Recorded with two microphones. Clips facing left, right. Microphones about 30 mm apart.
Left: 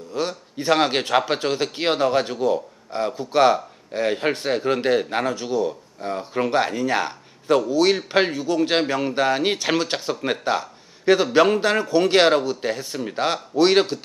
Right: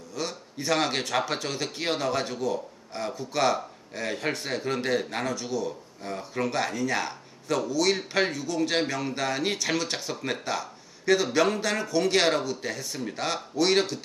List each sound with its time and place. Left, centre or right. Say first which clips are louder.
0.3 s speech: left 6 dB; left